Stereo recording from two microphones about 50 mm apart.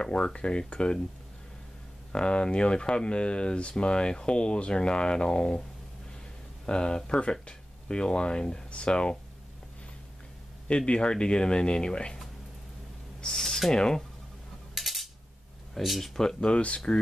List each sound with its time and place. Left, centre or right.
0.0 s speech: centre
2.1 s speech: centre
6.6 s speech: centre
10.9 s speech: centre
13.2 s speech: centre
14.7 s a sound: centre
15.7 s speech: centre
16.2 s speech: centre